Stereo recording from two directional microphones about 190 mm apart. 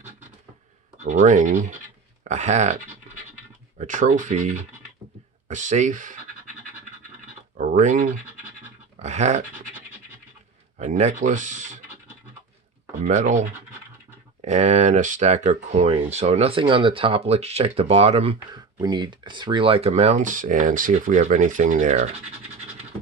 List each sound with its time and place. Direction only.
0.9 s speech: 40° right (ahead or behind)
7.5 s speech: 40° right (ahead or behind)
10.8 s speech: 35° right (ahead or behind)
13.0 s speech: 40° right (ahead or behind)